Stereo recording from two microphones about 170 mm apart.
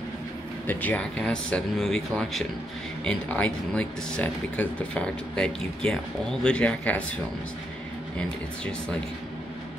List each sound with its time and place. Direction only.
0.7 s speech: 10° left (ahead or behind)